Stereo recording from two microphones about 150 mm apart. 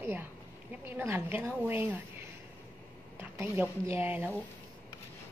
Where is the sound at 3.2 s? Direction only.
15° right (ahead or behind).